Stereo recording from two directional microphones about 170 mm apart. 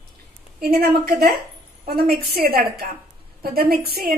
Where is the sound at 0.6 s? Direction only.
65° right (ahead or behind).